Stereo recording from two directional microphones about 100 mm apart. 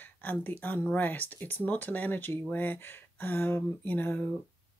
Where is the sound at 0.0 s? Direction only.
20° left (ahead or behind).